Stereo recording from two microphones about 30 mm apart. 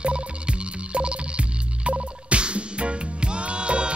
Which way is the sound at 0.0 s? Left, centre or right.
Right.